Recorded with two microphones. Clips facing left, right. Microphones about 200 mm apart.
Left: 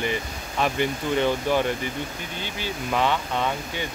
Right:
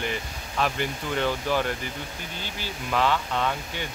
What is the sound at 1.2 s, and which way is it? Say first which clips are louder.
Speech: left 2 dB; 15° left (ahead or behind).